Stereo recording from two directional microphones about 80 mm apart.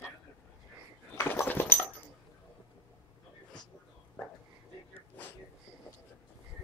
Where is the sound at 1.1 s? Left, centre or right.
Left.